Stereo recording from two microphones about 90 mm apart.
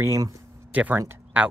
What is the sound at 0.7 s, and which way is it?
Speech, 20° right (ahead or behind).